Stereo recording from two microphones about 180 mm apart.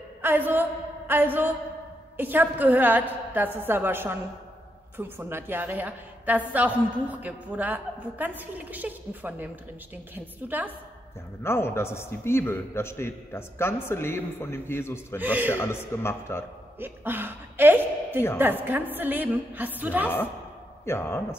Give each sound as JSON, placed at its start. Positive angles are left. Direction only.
{"t": 0.2, "sound": "a woman's voice", "side_deg": -10}
{"t": 11.4, "sound": "a man's voice", "side_deg": 15}
{"t": 15.1, "sound": "a woman's voice", "side_deg": -10}
{"t": 15.5, "sound": "a man's voice", "side_deg": 15}
{"t": 16.8, "sound": "a woman's voice", "side_deg": -10}
{"t": 20.8, "sound": "a man's voice", "side_deg": 15}